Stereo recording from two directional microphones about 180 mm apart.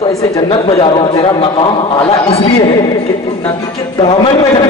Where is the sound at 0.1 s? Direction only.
20° left (ahead or behind).